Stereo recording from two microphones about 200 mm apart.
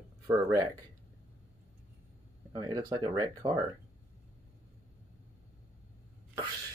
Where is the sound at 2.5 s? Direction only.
20° right (ahead or behind).